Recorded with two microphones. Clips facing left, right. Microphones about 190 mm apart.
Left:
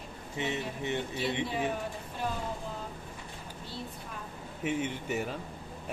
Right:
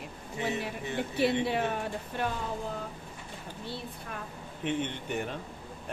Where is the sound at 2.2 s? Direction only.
70° right (ahead or behind).